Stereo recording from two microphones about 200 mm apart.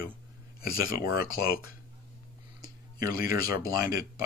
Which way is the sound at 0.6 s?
45° left (ahead or behind).